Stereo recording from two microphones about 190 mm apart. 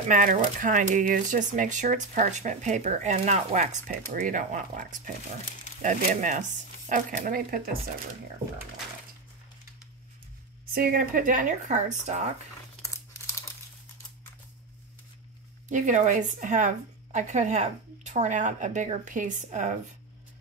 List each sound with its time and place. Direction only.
0.1 s speech: 45° right (ahead or behind)
10.7 s speech: 50° right (ahead or behind)
15.7 s speech: 40° right (ahead or behind)